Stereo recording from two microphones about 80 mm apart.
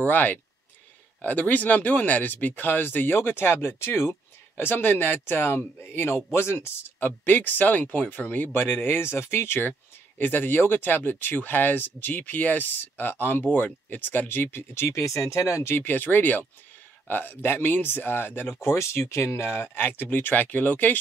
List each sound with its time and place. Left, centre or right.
0.0 s speech: left